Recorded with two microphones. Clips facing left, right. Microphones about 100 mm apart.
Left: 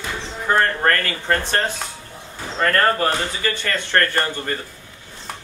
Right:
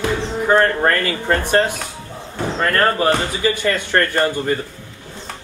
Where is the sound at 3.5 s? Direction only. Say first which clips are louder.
Right 3 dB; 15° right (ahead or behind).